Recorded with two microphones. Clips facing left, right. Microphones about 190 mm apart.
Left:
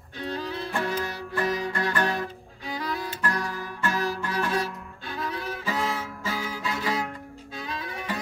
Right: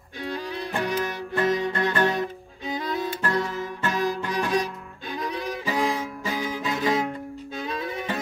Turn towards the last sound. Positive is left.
turn(degrees=-20)  # may be behind; listen again after turning